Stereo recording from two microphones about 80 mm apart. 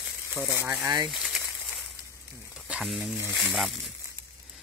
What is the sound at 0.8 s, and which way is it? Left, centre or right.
Speech, right.